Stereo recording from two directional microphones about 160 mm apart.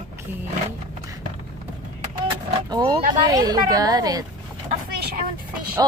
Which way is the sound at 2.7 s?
25° right (ahead or behind).